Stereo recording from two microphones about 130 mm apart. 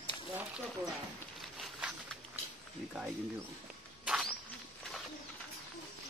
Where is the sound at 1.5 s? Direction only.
Centre (ahead or behind).